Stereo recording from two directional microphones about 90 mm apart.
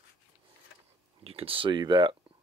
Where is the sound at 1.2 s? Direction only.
90° right; by 2.1 s 60° right (ahead or behind).